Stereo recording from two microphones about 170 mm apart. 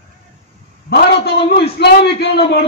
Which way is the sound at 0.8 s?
70° left (ahead or behind).